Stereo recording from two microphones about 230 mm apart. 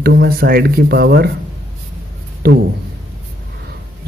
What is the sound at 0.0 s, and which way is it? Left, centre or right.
Speech, right.